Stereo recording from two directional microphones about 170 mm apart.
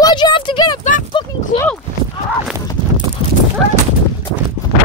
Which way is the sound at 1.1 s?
25° left (ahead or behind).